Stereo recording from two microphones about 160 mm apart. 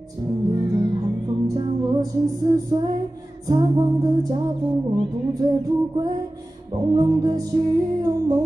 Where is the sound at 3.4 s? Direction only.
25° right (ahead or behind).